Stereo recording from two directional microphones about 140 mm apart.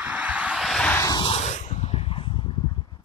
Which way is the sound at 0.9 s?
20° left (ahead or behind).